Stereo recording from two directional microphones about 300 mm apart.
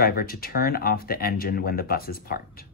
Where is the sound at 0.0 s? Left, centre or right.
Left.